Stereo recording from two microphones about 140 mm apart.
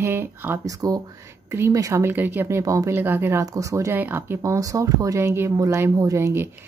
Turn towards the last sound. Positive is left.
turn(degrees=-20)  # may be behind; listen again after turning